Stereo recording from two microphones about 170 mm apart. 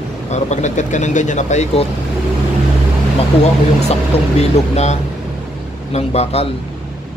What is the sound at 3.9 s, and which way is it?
A man's voice, 40° left (ahead or behind).